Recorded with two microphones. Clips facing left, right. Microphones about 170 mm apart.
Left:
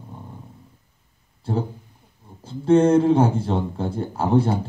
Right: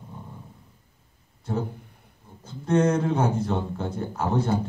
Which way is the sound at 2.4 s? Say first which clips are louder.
Left 6 dB; 30° left (ahead or behind).